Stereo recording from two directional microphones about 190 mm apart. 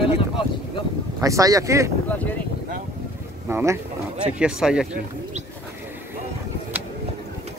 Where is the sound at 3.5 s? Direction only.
10° right (ahead or behind).